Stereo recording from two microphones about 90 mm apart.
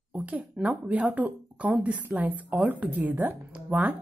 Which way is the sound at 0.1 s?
15° right (ahead or behind).